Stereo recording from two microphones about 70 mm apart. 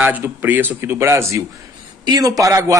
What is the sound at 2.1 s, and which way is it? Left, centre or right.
Speech, right.